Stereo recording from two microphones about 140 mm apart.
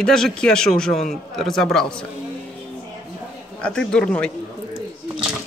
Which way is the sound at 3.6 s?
5° left (ahead or behind).